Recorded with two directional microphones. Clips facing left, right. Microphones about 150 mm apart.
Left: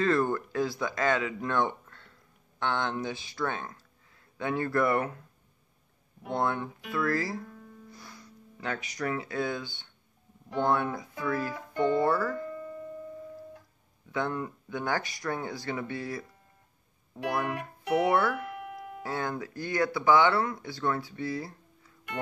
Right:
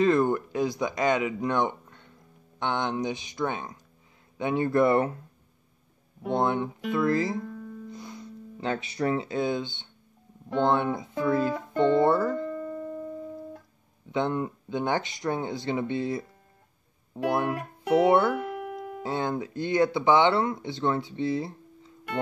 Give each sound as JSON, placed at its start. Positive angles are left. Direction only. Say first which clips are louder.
{"t": 0.0, "sound": "speech", "louder": "right 4 dB", "side_deg": -20}
{"t": 6.2, "sound": "speech", "louder": "right 4 dB", "side_deg": -20}
{"t": 14.1, "sound": "speech", "louder": "right 4 dB", "side_deg": -20}